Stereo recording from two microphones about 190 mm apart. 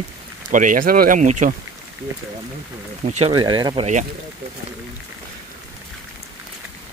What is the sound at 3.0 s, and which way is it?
Speech, 35° right (ahead or behind).